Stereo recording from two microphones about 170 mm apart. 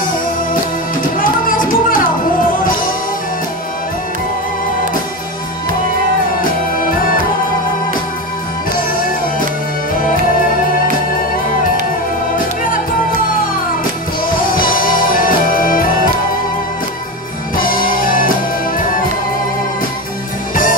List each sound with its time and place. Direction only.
1.1 s music: 55° left (ahead or behind)
6.8 s music: 55° left (ahead or behind)
14.5 s music: 55° left (ahead or behind)
17.6 s music: 55° left (ahead or behind)